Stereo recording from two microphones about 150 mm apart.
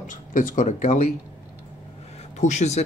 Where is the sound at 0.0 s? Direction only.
60° left (ahead or behind).